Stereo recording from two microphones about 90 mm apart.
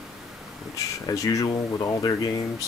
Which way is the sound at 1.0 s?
40° left (ahead or behind).